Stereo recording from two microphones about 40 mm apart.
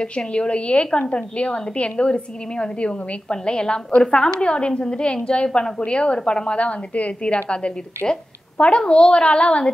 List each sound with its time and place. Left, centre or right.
0.0 s a woman's voice: left
7.4 s a woman's voice: left